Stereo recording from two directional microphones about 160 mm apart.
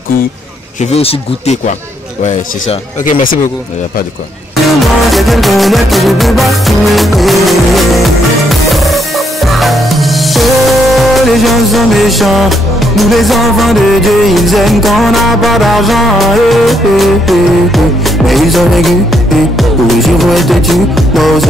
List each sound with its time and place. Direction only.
0.9 s speech: 40° left (ahead or behind)
5.1 s music: centre (ahead or behind)